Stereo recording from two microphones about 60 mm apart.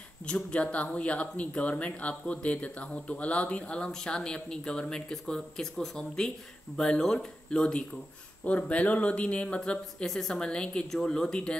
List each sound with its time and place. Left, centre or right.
0.3 s speech: centre